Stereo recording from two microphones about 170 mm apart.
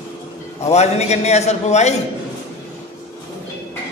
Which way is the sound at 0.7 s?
40° left (ahead or behind).